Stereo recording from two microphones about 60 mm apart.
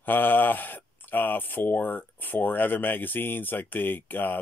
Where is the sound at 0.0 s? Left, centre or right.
Left.